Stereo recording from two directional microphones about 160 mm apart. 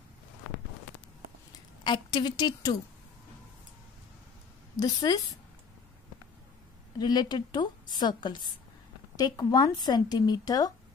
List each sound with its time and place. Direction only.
1.9 s a woman's voice: 25° left (ahead or behind)
4.7 s a woman's voice: 25° left (ahead or behind)
7.0 s a woman's voice: 25° left (ahead or behind)